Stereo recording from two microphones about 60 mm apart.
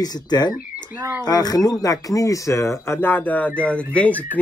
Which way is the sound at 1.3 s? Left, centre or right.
Left.